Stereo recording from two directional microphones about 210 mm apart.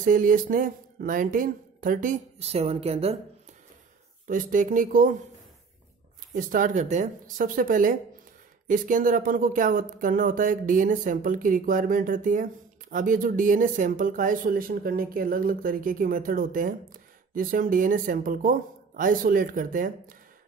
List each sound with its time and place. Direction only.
0.0 s speech: 40° right (ahead or behind)
4.3 s speech: 40° right (ahead or behind)
6.3 s speech: 40° right (ahead or behind)